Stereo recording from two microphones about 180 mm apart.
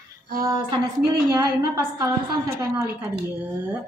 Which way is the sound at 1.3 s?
15° right (ahead or behind).